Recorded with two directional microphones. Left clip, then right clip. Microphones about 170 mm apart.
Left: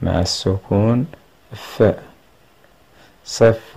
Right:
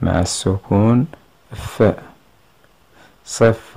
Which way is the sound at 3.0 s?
20° right (ahead or behind).